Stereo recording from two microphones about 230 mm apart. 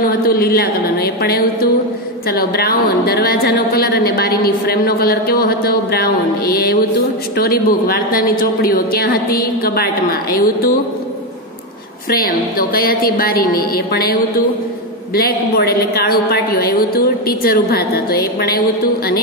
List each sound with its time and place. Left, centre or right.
0.0 s a woman's voice: left
12.1 s a woman's voice: left